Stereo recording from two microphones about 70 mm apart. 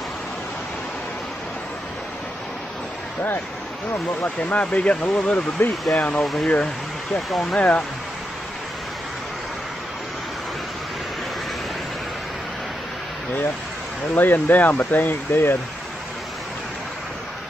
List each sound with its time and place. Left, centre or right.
4.4 s speech: centre
7.2 s speech: centre
7.5 s speech: left
14.1 s speech: left